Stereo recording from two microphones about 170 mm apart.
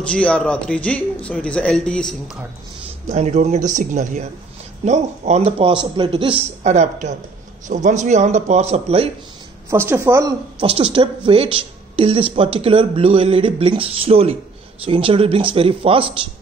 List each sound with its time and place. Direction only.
0.1 s a man's voice: 5° left (ahead or behind)
3.1 s a man's voice: 40° right (ahead or behind)
9.7 s a woman's voice: 15° right (ahead or behind)
10.6 s speech: 35° right (ahead or behind)